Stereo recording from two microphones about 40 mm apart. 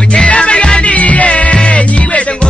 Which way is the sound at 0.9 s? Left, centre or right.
Left.